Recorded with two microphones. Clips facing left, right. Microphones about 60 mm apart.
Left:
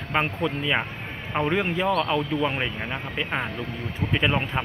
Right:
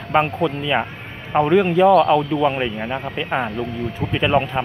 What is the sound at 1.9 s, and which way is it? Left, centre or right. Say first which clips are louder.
Speech: right 9 dB; centre.